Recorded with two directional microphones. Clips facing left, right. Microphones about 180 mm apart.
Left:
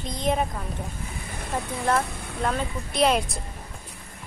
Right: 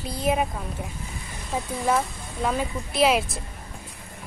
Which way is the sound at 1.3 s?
60° left (ahead or behind).